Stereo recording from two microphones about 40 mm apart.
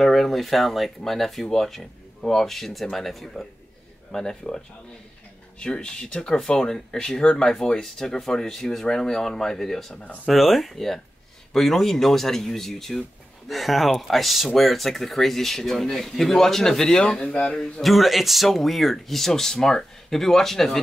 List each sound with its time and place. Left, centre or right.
0.0 s speech: centre
4.1 s speech: centre
5.6 s speech: left
17.8 s speech: centre